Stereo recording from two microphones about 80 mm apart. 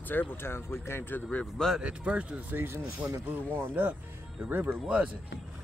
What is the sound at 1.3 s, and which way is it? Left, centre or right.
Speech, centre.